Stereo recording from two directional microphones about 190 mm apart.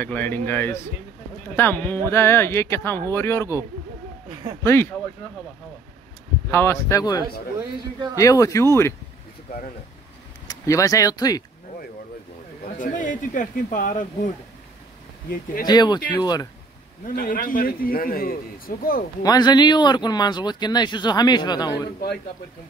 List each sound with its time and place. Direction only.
0.0 s speech: 10° left (ahead or behind)
4.6 s speech: 15° left (ahead or behind)
6.5 s speech: 15° left (ahead or behind)
10.5 s speech: 15° left (ahead or behind)
12.6 s a man's voice: 40° left (ahead or behind)
15.6 s speech: 20° left (ahead or behind)
17.0 s a man's voice: 50° left (ahead or behind)
19.2 s speech: 20° left (ahead or behind)